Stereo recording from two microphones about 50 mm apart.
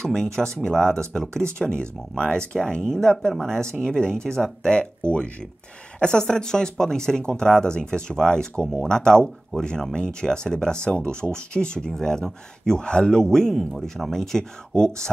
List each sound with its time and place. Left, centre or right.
0.0 s speech: centre